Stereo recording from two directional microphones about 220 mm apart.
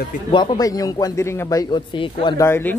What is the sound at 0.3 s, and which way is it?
A man's voice, 20° left (ahead or behind).